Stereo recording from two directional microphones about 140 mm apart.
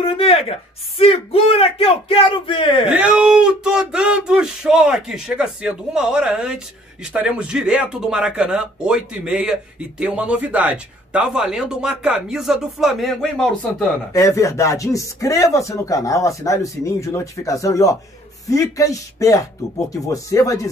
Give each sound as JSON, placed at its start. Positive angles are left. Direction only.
{"t": 0.0, "sound": "speech", "side_deg": 45}
{"t": 2.9, "sound": "speech", "side_deg": -10}
{"t": 14.1, "sound": "speech", "side_deg": 20}